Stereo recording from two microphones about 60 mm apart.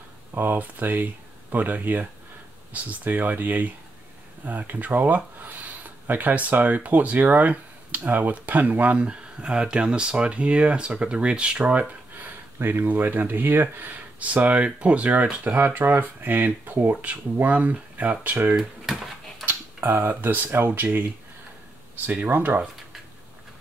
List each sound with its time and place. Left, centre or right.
0.3 s speech: right
12.5 s speech: right
18.6 s drawer open or close: centre
19.4 s speech: right